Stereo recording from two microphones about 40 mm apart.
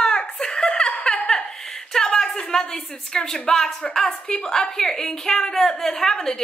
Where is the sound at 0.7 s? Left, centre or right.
Left.